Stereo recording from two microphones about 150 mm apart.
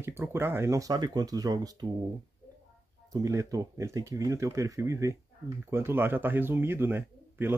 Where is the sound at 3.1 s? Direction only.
20° right (ahead or behind).